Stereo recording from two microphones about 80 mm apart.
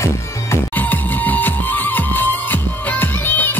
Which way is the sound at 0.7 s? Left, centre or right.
Left.